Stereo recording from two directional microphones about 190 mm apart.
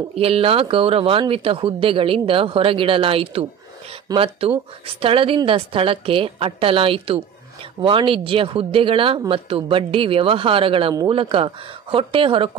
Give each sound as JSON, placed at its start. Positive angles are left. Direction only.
{"t": 0.1, "sound": "speech", "side_deg": -30}